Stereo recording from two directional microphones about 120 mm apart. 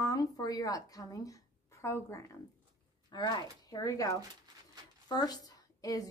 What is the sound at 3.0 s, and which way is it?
A woman's voice, 40° left (ahead or behind).